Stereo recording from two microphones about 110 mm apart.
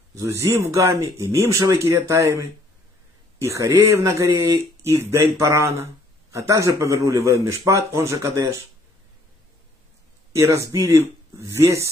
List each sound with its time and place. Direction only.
0.1 s speech: 30° right (ahead or behind)
10.3 s speech: 25° right (ahead or behind)